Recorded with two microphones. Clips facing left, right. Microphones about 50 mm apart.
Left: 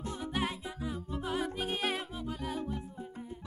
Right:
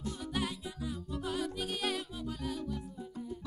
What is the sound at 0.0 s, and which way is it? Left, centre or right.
Music, left.